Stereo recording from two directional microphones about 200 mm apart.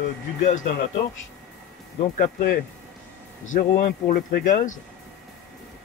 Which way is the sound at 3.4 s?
40° left (ahead or behind).